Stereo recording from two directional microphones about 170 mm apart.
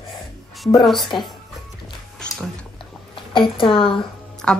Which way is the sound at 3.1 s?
30° left (ahead or behind).